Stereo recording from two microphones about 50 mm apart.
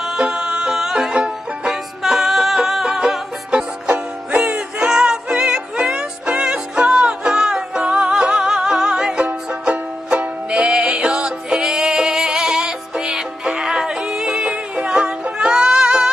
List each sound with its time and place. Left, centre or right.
0.2 s music: centre
1.7 s music: centre
3.5 s music: right